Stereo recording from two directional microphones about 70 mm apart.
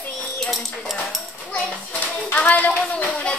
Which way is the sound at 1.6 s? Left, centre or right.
Left.